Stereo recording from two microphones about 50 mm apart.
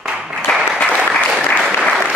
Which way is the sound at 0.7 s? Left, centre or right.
Centre.